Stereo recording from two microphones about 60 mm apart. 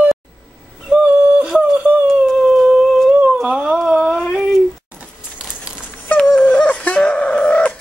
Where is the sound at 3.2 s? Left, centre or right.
Centre.